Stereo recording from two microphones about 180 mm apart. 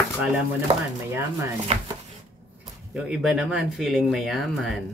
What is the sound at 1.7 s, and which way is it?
Speech, 35° right (ahead or behind).